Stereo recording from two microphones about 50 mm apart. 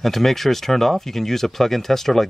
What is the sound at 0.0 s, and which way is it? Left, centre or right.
Speech, centre.